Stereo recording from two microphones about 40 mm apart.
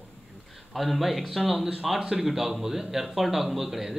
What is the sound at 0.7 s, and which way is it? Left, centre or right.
Speech, centre.